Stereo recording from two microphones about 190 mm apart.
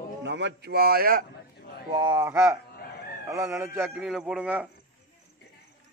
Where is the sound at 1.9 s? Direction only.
20° right (ahead or behind).